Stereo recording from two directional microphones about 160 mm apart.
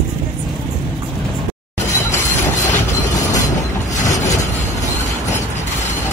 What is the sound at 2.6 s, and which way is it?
Train, 50° left (ahead or behind).